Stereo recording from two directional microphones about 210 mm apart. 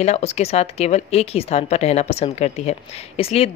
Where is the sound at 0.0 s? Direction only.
30° left (ahead or behind).